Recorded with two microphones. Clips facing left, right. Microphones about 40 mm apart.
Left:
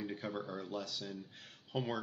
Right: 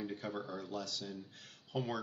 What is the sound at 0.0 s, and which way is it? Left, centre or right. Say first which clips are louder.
Speech: even; centre.